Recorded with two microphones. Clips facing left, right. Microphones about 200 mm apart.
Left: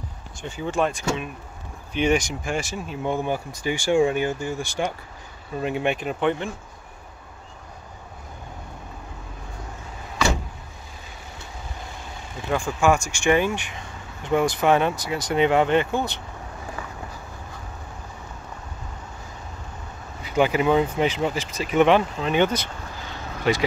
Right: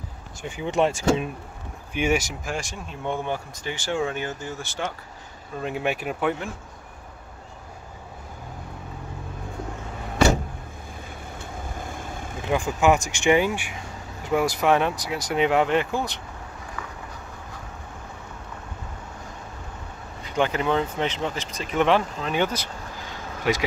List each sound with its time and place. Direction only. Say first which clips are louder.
0.4 s speech: right 1 dB; 15° right (ahead or behind)
2.0 s speech: left 2 dB; 5° right (ahead or behind); by 4.9 s 15° left (ahead or behind)
5.6 s speech: left 2 dB; centre (ahead or behind)
11.3 s vehicle: right 3 dB; 50° right (ahead or behind)
12.4 s speech: even; 20° right (ahead or behind); by 16.2 s centre (ahead or behind)
20.2 s speech: left 4 dB; 10° left (ahead or behind)
23.5 s vehicle: left 2 dB; 10° right (ahead or behind)